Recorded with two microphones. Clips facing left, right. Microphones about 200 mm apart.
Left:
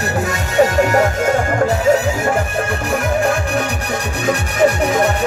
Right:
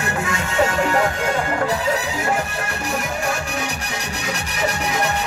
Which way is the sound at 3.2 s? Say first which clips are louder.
Left 7 dB; 55° left (ahead or behind).